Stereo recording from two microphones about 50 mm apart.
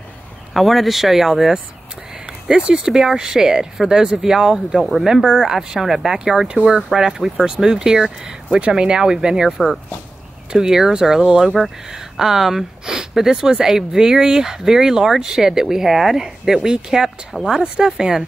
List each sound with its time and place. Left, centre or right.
0.6 s speech: centre
2.5 s speech: right
2.9 s speech: centre
4.7 s speech: centre
17.3 s speech: centre